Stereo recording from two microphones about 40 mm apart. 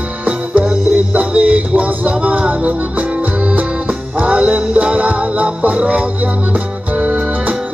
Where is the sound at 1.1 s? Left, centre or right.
Right.